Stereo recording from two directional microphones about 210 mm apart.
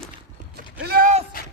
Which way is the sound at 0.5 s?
45° right (ahead or behind).